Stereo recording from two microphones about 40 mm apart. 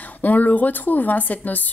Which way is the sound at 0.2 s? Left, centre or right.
Left.